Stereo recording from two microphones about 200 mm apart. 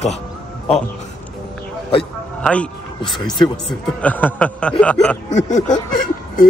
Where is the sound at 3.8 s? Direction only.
5° left (ahead or behind).